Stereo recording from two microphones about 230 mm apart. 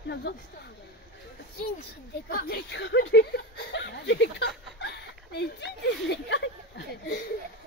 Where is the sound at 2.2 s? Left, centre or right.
Left.